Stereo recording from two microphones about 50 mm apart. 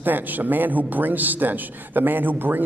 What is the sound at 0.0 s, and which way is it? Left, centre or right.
A man's voice, right.